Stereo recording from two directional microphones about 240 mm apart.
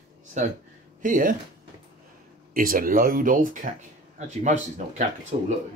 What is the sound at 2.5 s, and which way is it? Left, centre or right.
Speech, right.